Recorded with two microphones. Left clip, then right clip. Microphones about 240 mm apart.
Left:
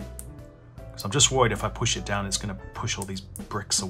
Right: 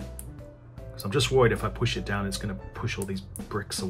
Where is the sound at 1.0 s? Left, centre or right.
Centre.